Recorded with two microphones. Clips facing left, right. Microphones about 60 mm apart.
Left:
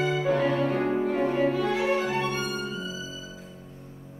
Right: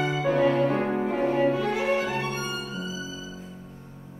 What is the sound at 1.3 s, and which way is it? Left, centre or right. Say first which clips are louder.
Violin: right 1 dB; right.